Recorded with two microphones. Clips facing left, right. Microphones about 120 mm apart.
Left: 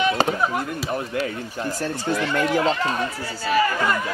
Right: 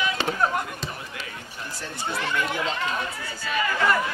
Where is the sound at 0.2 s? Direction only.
40° left (ahead or behind).